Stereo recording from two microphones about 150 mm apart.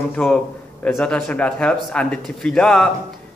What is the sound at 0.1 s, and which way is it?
A man's voice, 5° left (ahead or behind).